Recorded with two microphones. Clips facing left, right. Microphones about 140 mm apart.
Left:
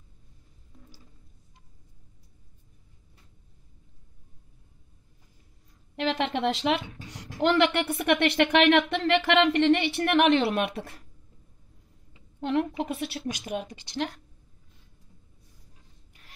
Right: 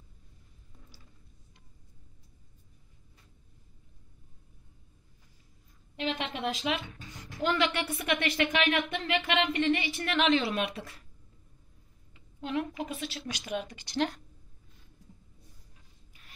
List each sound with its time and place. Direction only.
5.9 s a woman's voice: 80° left; by 10.7 s 60° left (ahead or behind)
12.4 s a woman's voice: 65° left (ahead or behind)
13.5 s speech: 40° left (ahead or behind)